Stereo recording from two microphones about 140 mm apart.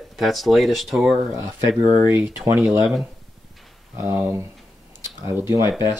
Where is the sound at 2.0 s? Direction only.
15° right (ahead or behind).